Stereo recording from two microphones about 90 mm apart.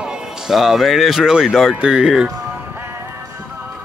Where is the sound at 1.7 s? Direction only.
10° right (ahead or behind).